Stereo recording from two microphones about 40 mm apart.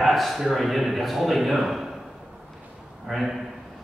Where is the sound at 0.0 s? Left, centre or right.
Centre.